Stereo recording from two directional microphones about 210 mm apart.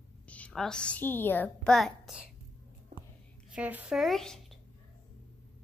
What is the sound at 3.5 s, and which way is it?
Speech, 5° right (ahead or behind).